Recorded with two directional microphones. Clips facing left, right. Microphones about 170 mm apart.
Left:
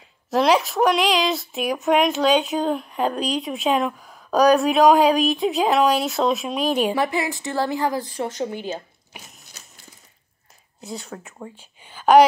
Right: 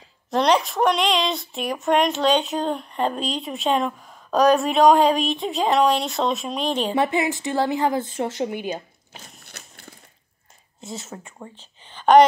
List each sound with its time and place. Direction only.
0.3 s speech: 5° left (ahead or behind)
7.0 s a woman's voice: 20° right (ahead or behind)
9.4 s a sound: 60° right (ahead or behind)
10.8 s a woman's voice: centre (ahead or behind)